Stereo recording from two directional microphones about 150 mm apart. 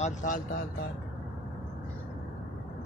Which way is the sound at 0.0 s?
55° left (ahead or behind).